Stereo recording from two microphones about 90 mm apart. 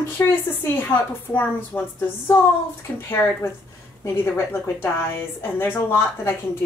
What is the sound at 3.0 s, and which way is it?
A woman's voice, 25° left (ahead or behind).